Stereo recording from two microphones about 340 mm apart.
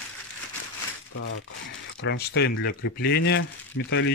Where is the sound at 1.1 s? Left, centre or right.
Left.